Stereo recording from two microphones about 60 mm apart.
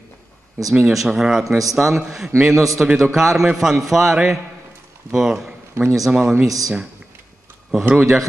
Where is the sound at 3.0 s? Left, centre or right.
Centre.